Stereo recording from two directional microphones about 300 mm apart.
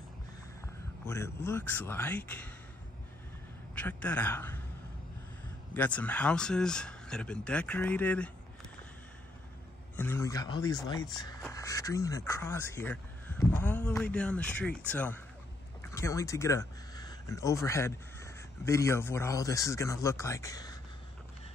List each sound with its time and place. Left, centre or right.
1.0 s speech: centre
3.7 s speech: centre
5.8 s speech: centre
9.9 s speech: centre